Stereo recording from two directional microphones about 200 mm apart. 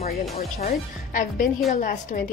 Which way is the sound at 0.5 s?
35° left (ahead or behind).